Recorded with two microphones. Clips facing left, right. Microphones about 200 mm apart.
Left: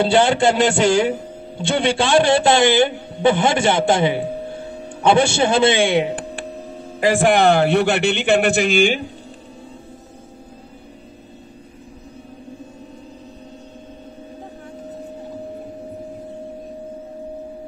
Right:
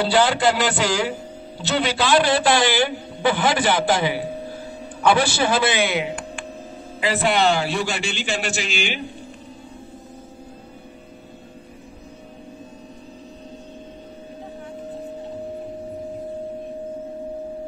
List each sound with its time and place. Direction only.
0.0 s a man's voice: 25° left (ahead or behind)
7.0 s a man's voice: 50° left (ahead or behind)